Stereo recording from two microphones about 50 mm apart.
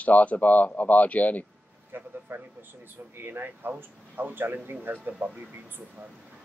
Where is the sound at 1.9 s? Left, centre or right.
Right.